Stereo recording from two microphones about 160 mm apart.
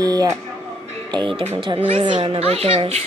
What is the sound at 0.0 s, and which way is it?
A child's voice, 25° right (ahead or behind).